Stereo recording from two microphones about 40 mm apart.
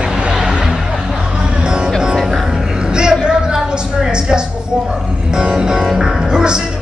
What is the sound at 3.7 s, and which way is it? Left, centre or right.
A woman's voice, right.